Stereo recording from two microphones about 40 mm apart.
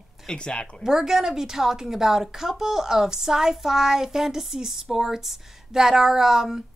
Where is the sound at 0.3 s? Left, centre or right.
Left.